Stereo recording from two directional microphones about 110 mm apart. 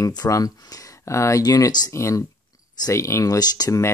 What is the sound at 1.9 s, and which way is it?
Speech, 25° left (ahead or behind).